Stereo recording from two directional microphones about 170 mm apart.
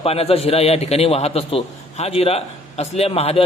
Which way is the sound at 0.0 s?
35° left (ahead or behind).